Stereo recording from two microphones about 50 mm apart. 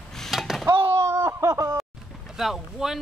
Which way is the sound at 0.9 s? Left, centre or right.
Right.